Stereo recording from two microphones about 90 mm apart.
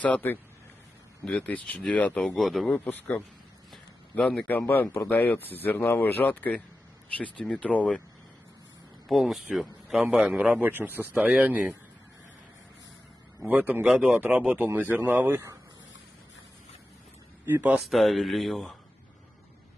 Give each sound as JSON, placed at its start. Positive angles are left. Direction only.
{"t": 0.0, "sound": "speech", "side_deg": 20}
{"t": 2.3, "sound": "speech", "side_deg": 0}
{"t": 2.7, "sound": "a man's voice", "side_deg": 20}
{"t": 4.5, "sound": "speech", "side_deg": 20}
{"t": 9.0, "sound": "speech", "side_deg": 0}
{"t": 10.1, "sound": "a man's voice", "side_deg": -10}
{"t": 13.5, "sound": "a man's voice", "side_deg": -20}
{"t": 17.5, "sound": "a man's voice", "side_deg": -20}
{"t": 17.8, "sound": "speech", "side_deg": 0}